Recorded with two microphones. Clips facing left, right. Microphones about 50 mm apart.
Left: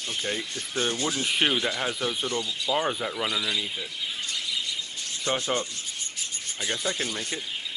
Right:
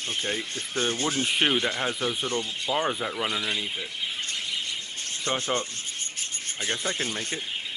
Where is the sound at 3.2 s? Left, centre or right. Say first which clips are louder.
Left 1 dB; right.